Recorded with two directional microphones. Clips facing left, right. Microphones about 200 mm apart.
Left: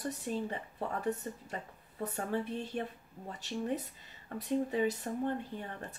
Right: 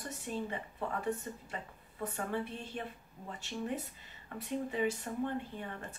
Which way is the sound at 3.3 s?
40° left (ahead or behind).